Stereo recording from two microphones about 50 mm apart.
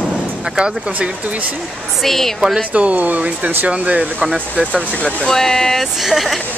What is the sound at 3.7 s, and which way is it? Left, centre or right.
Speech, right.